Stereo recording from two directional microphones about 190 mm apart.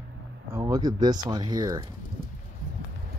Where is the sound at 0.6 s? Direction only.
20° right (ahead or behind).